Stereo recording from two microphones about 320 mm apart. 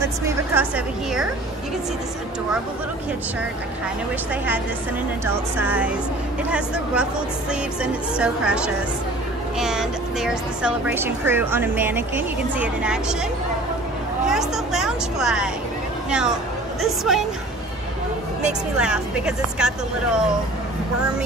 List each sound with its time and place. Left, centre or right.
0.2 s speech: centre
5.2 s speech: centre
7.8 s speech: centre
14.2 s a sound: centre
16.1 s speech: centre
18.4 s speech: centre